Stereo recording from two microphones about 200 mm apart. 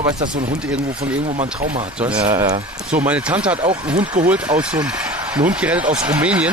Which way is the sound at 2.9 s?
5° right (ahead or behind).